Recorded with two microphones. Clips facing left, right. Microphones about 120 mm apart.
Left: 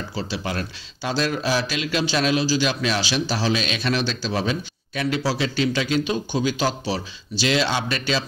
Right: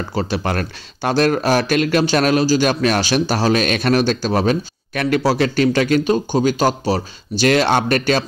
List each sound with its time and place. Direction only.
0.1 s speech: 55° right (ahead or behind)